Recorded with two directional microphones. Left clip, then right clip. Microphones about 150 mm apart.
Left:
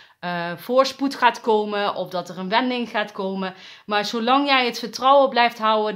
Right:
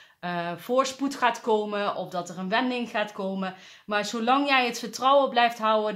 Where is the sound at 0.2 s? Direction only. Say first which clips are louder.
Left 4 dB; 30° left (ahead or behind).